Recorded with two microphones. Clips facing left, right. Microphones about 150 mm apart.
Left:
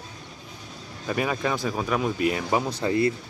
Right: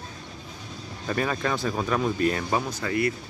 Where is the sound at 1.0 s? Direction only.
10° left (ahead or behind).